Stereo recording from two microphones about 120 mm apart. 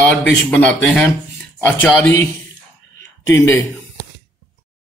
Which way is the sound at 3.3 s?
20° left (ahead or behind).